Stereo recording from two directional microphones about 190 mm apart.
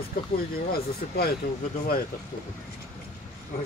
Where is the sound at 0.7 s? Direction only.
55° left (ahead or behind).